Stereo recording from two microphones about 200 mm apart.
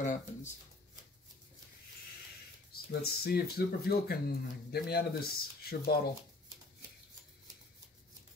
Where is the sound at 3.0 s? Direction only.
50° left (ahead or behind).